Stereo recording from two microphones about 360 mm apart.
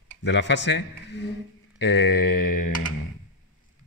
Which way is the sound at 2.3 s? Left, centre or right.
Left.